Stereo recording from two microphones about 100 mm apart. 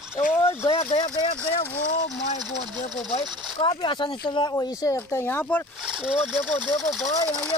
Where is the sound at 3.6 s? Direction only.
55° left (ahead or behind).